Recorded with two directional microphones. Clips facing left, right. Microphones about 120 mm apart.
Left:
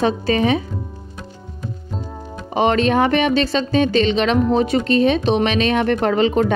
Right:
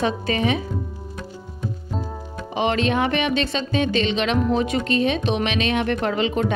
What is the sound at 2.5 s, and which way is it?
Speech, 40° left (ahead or behind).